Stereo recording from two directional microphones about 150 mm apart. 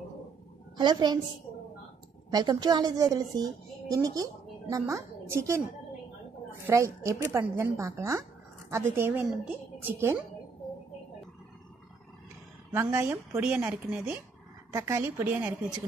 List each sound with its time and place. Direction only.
0.7 s a woman's voice: 30° right (ahead or behind)
2.3 s a woman's voice: 25° right (ahead or behind)
6.7 s a woman's voice: 20° right (ahead or behind)
12.7 s a woman's voice: 15° right (ahead or behind)